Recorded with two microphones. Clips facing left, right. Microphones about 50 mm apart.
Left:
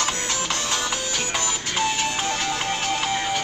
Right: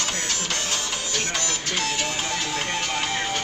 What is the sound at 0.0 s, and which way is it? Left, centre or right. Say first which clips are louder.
Music: left 3 dB; centre.